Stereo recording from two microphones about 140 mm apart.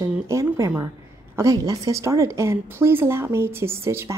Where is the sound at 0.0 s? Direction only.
20° right (ahead or behind).